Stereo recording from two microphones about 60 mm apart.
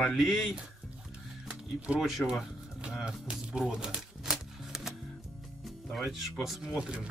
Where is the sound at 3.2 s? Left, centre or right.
Centre.